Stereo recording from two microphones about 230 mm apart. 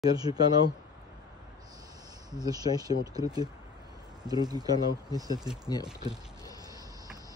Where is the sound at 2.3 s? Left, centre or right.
Centre.